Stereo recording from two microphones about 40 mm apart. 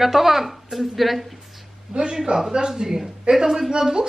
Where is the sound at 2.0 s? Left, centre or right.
Centre.